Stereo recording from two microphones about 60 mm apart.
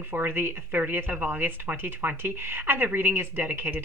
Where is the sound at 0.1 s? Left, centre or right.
Right.